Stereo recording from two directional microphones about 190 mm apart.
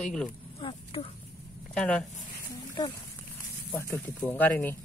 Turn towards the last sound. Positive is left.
turn(degrees=10)  # may be behind; listen again after turning